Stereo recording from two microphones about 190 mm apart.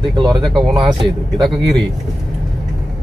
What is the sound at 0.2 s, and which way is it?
Speech, 25° right (ahead or behind).